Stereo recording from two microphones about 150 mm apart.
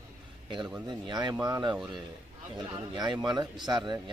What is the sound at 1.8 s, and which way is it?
Speech, centre (ahead or behind).